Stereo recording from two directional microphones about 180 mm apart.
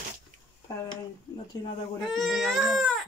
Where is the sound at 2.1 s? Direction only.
Centre (ahead or behind).